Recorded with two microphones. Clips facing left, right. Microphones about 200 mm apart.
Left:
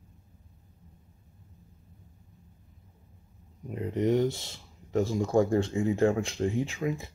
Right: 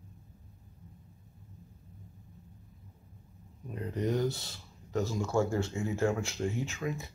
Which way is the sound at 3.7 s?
20° left (ahead or behind).